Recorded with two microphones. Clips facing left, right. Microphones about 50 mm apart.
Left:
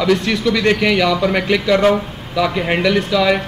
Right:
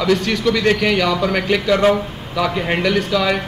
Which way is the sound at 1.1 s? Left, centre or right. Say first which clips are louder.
Left 2 dB; left.